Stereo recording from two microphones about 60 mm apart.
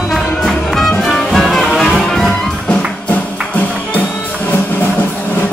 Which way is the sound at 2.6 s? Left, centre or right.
Left.